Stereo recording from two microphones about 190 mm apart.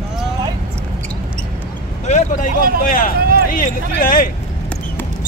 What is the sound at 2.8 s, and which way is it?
Speech, 45° left (ahead or behind).